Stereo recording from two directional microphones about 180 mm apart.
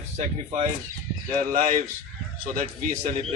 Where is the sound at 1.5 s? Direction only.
45° right (ahead or behind).